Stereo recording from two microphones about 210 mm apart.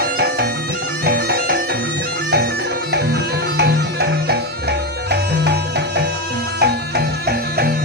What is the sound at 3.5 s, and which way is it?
Music, 50° right (ahead or behind).